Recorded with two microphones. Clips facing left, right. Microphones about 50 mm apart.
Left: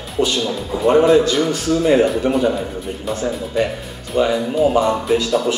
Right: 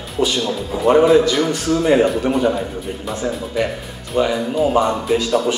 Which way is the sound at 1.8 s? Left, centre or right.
Centre.